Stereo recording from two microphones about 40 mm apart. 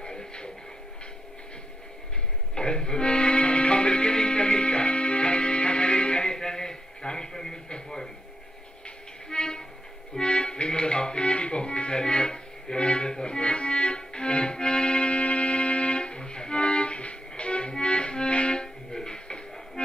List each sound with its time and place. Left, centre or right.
0.0 s music: centre
2.5 s music: left
9.3 s train: centre
10.1 s music: left